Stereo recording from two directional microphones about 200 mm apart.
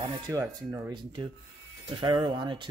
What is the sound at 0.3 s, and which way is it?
Speech, 15° right (ahead or behind).